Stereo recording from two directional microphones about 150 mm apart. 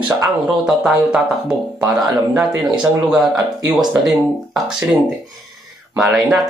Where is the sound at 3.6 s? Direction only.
25° right (ahead or behind).